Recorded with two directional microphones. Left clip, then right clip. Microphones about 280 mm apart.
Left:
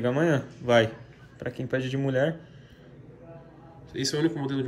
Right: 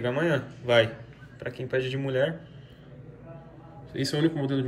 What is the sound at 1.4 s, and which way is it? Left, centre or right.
Speech, left.